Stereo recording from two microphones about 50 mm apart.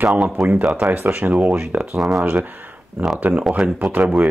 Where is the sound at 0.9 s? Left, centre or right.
Right.